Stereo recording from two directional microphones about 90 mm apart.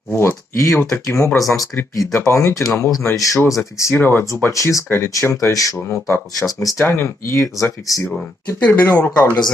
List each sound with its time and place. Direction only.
0.1 s a sound: 30° left (ahead or behind)
0.9 s speech: 30° left (ahead or behind)
4.0 s speech: 25° left (ahead or behind)
4.5 s speech: 35° left (ahead or behind)
5.9 s speech: 25° left (ahead or behind)
6.4 s speech: 40° left (ahead or behind)
8.5 s speech: 20° left (ahead or behind)